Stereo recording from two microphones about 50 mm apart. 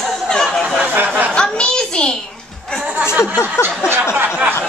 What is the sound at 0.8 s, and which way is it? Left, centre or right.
Speech, right.